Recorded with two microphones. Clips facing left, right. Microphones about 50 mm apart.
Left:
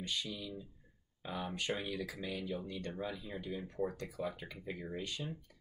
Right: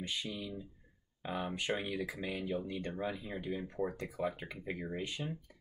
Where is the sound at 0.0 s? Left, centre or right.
Right.